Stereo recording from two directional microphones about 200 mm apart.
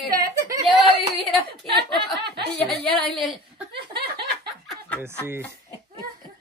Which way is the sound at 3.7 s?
55° right (ahead or behind).